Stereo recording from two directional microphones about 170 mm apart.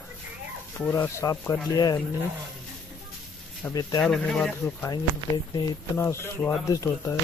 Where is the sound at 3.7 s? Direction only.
20° left (ahead or behind).